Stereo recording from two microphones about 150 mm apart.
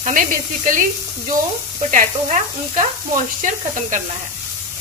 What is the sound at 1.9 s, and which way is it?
Speech, 55° right (ahead or behind).